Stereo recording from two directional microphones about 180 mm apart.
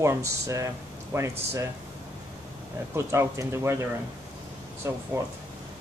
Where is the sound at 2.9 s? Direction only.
15° right (ahead or behind).